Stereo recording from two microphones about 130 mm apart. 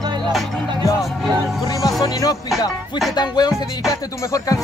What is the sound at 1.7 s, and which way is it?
Music, 25° left (ahead or behind).